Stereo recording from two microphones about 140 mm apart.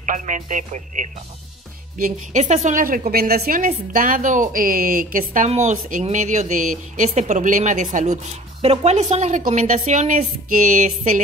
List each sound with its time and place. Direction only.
0.0 s speech: 65° right (ahead or behind)
2.0 s a woman's voice: 75° right (ahead or behind)
5.5 s speech: 60° right (ahead or behind)
8.5 s a woman's voice: 50° right (ahead or behind); by 11.2 s 65° right (ahead or behind)